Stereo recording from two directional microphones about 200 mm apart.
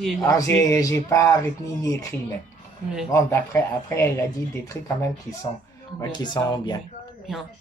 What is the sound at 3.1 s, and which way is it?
Speech, 15° left (ahead or behind).